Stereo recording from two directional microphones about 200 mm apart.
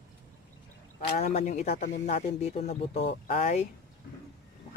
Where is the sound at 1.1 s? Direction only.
30° left (ahead or behind).